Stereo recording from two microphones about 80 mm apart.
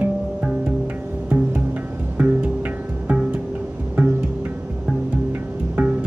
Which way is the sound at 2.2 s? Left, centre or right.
Centre.